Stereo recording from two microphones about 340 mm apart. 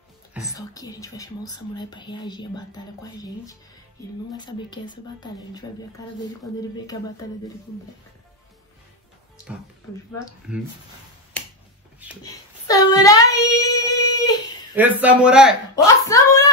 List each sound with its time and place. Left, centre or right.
0.5 s speech: centre
6.9 s speech: centre
12.2 s child singing: centre
14.8 s a man's voice: centre
15.7 s a sound: centre